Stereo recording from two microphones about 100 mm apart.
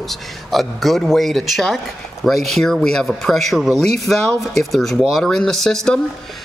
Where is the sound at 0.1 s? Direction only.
Centre (ahead or behind).